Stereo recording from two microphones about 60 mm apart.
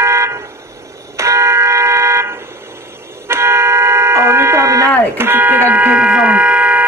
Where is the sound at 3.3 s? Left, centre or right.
Right.